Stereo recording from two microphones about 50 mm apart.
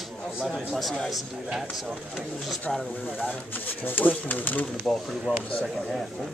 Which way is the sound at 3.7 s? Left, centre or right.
Left.